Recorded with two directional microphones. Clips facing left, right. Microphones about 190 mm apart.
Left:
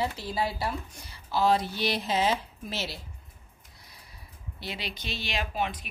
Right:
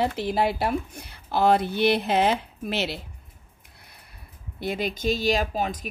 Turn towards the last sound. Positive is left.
turn(degrees=-40)  # may be behind; listen again after turning